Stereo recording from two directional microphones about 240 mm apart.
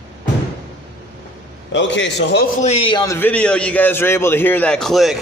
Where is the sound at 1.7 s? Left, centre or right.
Left.